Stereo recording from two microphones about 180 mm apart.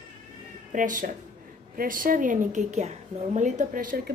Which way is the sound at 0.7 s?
50° right (ahead or behind).